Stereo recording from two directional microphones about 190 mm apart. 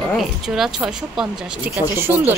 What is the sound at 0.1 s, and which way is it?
Speech, centre (ahead or behind).